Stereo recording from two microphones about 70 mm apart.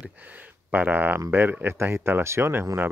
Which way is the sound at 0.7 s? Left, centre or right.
Right.